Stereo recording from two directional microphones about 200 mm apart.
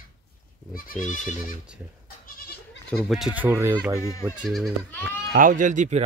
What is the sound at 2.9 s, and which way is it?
Speech, centre (ahead or behind).